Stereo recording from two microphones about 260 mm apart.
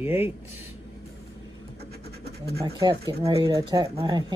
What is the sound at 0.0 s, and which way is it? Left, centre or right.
Speech, centre.